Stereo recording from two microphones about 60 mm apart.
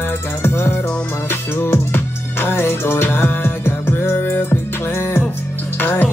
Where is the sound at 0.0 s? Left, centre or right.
Left.